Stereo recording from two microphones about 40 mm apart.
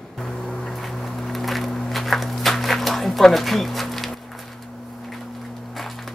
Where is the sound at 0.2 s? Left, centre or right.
Centre.